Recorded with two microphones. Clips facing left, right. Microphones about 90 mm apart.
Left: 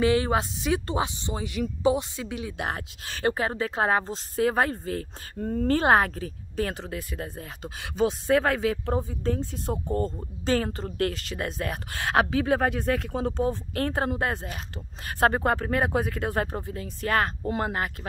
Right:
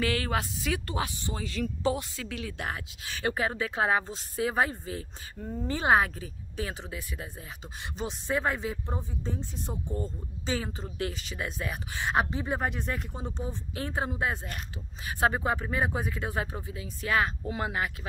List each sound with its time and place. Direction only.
0.0 s speech: 25° left (ahead or behind)
2.7 s a woman's voice: 40° left (ahead or behind)
7.6 s speech: 75° left (ahead or behind)
9.1 s speech: 60° left (ahead or behind); by 17.9 s 45° left (ahead or behind)